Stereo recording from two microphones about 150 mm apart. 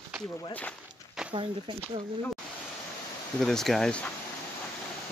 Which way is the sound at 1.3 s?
35° right (ahead or behind).